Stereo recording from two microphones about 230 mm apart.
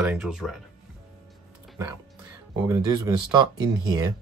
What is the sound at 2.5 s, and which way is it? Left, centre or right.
Speech, centre.